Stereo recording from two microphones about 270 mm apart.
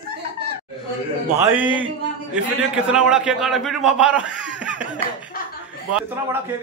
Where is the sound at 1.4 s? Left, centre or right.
Centre.